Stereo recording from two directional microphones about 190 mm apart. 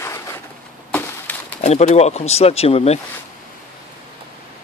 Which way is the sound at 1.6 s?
35° left (ahead or behind).